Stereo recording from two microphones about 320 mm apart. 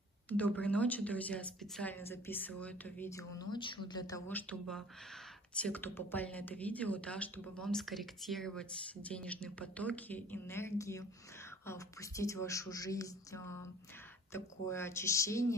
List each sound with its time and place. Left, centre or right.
0.3 s a woman's voice: centre